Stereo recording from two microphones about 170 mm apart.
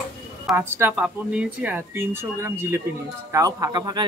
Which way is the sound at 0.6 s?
15° right (ahead or behind).